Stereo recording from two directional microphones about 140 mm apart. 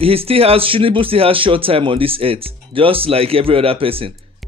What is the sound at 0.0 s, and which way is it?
A man's voice, 45° right (ahead or behind).